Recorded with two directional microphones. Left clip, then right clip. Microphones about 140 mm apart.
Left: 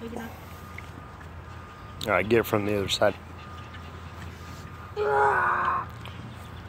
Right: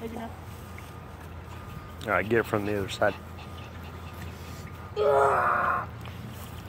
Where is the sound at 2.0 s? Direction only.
50° left (ahead or behind).